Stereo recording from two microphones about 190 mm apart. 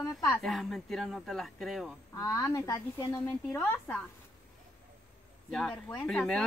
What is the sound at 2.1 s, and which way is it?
A child's voice, 15° left (ahead or behind).